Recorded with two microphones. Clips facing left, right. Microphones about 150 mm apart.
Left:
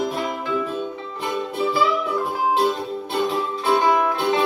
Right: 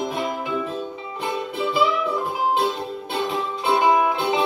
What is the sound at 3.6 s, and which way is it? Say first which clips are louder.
Music: even; 25° right (ahead or behind).